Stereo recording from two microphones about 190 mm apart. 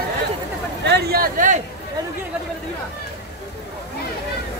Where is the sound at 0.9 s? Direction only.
50° right (ahead or behind).